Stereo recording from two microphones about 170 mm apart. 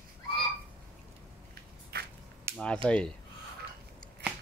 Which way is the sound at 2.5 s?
15° right (ahead or behind).